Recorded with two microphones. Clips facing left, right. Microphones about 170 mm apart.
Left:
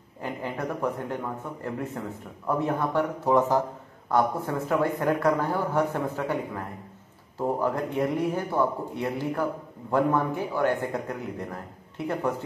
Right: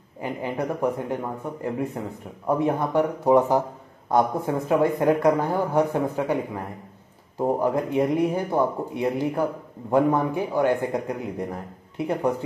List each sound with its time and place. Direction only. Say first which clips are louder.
0.2 s speech: right 4 dB; 15° right (ahead or behind)